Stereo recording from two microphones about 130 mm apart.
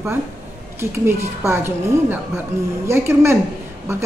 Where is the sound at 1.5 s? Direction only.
20° right (ahead or behind).